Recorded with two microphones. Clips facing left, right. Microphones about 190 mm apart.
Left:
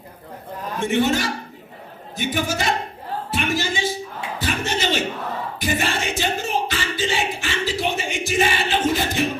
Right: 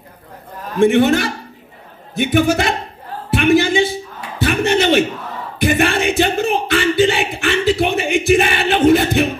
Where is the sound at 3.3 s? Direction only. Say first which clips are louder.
Right 12 dB; 60° right (ahead or behind).